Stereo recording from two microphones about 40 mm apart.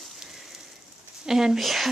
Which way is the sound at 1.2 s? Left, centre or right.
Centre.